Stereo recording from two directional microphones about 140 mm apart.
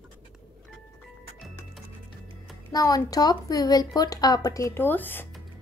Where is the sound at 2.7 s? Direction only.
25° left (ahead or behind).